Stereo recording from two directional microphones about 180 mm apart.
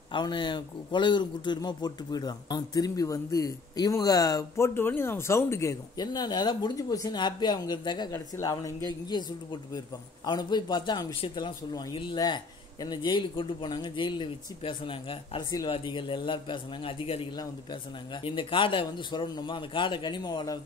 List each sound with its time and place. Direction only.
0.1 s speech: 25° left (ahead or behind)